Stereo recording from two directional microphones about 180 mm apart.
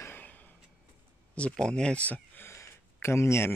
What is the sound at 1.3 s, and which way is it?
Speech, 5° left (ahead or behind).